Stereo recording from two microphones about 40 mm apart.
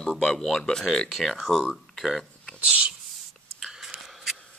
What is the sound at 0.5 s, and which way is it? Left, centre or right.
Speech, centre.